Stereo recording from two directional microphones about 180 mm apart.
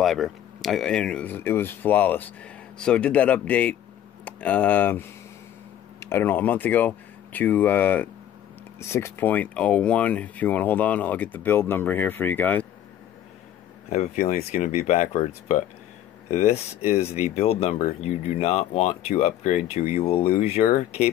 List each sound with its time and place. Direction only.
0.0 s speech: centre (ahead or behind)
13.8 s speech: 40° left (ahead or behind)